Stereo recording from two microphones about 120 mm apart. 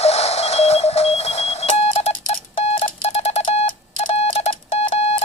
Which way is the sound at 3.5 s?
60° left (ahead or behind).